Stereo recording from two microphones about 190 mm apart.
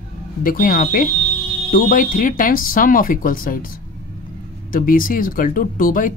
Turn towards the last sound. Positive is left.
turn(degrees=45)  # may be behind; listen again after turning